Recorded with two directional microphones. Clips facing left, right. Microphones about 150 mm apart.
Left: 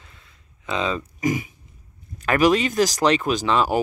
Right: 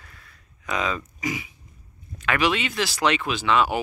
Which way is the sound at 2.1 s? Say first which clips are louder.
Left 6 dB; 40° left (ahead or behind).